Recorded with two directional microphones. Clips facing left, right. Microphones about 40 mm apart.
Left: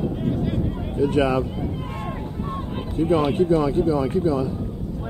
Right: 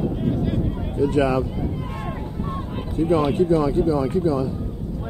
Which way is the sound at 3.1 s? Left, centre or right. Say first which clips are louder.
Even; left.